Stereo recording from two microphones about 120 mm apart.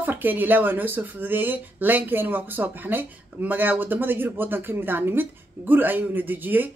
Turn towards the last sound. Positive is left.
turn(degrees=-15)  # may be behind; listen again after turning